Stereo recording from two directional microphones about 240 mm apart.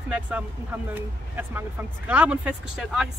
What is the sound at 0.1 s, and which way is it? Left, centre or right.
Speech, centre.